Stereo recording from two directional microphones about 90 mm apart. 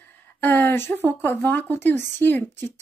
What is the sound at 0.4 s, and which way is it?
Speech, 20° left (ahead or behind).